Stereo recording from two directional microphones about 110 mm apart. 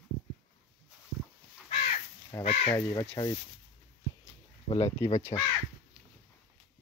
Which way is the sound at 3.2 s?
40° left (ahead or behind).